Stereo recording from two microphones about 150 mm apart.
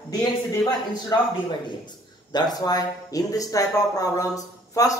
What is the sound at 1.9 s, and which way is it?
Speech, 30° left (ahead or behind).